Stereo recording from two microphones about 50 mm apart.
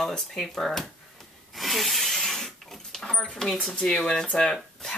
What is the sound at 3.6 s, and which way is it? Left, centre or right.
Speech, centre.